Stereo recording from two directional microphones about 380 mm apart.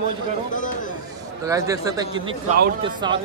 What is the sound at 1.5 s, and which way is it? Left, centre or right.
A man's voice, centre.